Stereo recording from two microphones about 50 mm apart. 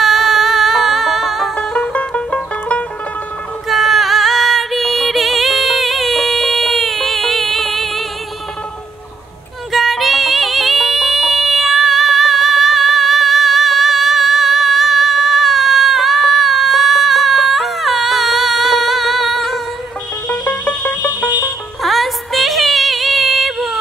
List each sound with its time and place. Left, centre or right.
0.0 s music: centre
1.6 s music: centre
3.6 s music: centre
9.7 s music: centre
20.4 s music: left
21.8 s music: centre